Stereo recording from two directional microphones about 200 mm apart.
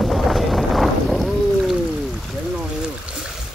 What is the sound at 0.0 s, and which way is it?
Boat, centre (ahead or behind).